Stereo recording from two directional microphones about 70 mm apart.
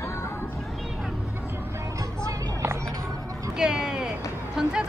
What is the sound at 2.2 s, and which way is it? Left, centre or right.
Music, right.